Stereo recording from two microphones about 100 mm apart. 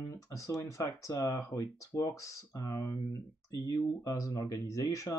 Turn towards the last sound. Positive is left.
turn(degrees=35)  # may be behind; listen again after turning